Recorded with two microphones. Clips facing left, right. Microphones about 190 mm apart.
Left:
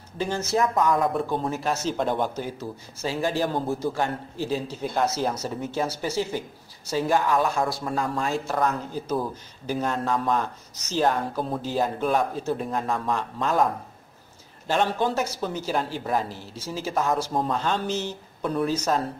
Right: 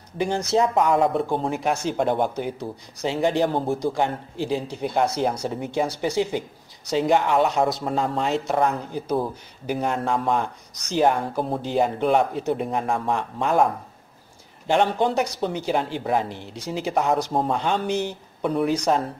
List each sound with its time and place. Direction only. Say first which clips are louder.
0.2 s speech: right 3 dB; 15° right (ahead or behind)
14.7 s speech: right 3 dB; 20° right (ahead or behind)